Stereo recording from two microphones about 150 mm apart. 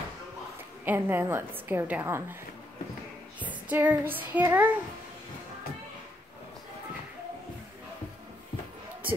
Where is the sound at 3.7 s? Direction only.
10° right (ahead or behind).